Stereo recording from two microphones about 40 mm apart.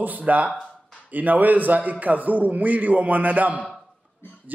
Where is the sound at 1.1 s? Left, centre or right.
Right.